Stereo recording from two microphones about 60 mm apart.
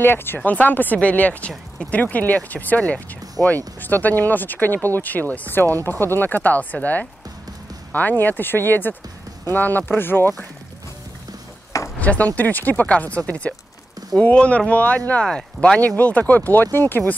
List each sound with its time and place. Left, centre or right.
0.0 s speech: left
0.4 s speech: left
5.9 s speech: left
12.0 s speech: left
15.2 s speech: centre
16.0 s speech: left
16.7 s speech: left